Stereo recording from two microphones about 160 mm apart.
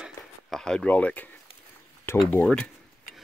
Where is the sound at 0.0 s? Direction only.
Centre (ahead or behind).